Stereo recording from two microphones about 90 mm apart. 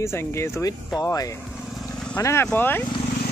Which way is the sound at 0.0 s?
30° left (ahead or behind).